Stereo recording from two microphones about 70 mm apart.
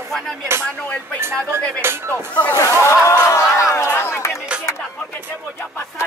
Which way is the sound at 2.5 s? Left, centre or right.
Left.